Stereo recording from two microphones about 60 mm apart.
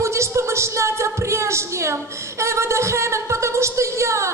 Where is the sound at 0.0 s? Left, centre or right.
Right.